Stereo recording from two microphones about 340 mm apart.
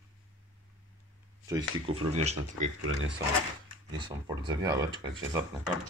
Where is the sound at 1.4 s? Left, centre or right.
Centre.